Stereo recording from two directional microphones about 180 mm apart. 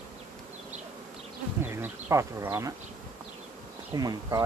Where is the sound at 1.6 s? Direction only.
15° right (ahead or behind).